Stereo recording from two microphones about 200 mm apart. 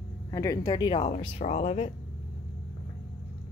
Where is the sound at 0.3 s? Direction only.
15° left (ahead or behind); by 1.9 s 35° left (ahead or behind).